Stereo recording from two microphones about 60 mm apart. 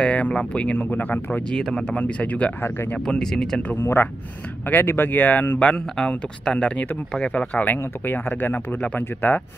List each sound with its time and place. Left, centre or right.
0.0 s speech: centre
1.5 s speech: centre
1.9 s speech: left
3.1 s speech: centre
3.7 s speech: left
5.9 s speech: centre